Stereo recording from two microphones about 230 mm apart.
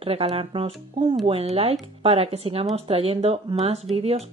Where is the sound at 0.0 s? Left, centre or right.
Right.